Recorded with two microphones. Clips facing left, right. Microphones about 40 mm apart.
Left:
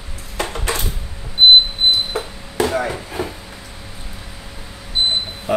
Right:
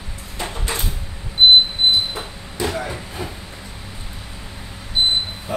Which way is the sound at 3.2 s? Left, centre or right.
Left.